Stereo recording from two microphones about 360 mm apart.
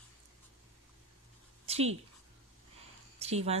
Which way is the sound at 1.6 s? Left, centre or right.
Centre.